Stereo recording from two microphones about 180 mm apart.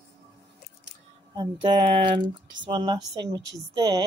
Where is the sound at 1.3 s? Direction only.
25° right (ahead or behind).